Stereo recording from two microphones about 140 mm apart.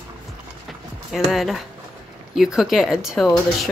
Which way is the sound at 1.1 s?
Centre (ahead or behind).